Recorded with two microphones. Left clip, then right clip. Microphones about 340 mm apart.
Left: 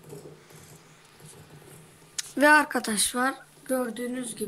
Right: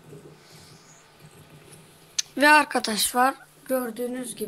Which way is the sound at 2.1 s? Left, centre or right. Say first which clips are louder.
Right 2 dB; centre.